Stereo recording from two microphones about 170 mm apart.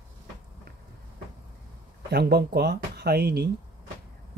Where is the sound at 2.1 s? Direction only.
70° right (ahead or behind).